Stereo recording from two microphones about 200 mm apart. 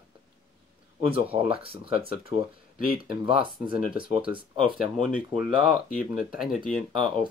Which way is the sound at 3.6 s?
45° left (ahead or behind).